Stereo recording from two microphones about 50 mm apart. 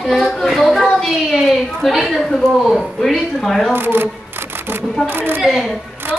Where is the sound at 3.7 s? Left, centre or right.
Right.